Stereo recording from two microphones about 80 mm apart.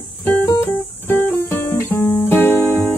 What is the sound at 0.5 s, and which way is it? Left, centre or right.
Music, left.